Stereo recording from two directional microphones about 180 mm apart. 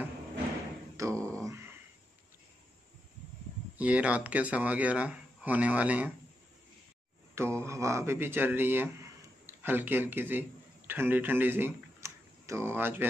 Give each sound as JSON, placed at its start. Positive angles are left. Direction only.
{"t": 1.1, "sound": "a sound", "side_deg": 5}
{"t": 3.7, "sound": "speech", "side_deg": -10}
{"t": 7.3, "sound": "speech", "side_deg": -15}